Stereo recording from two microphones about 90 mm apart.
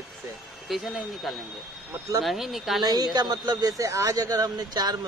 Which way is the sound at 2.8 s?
45° right (ahead or behind).